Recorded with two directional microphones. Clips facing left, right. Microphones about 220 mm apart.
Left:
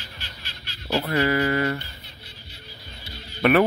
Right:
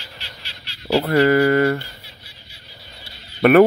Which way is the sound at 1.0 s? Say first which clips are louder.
Right 8 dB; 50° right (ahead or behind).